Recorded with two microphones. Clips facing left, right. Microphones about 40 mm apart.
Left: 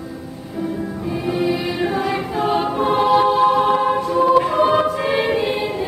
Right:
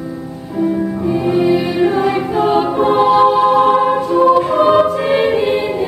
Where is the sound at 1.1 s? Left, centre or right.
Centre.